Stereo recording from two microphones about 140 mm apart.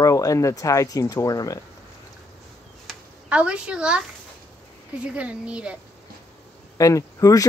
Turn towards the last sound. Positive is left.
turn(degrees=25)  # may be behind; listen again after turning